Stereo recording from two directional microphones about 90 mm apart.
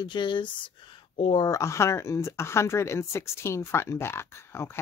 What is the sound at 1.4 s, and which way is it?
Speech, 35° left (ahead or behind).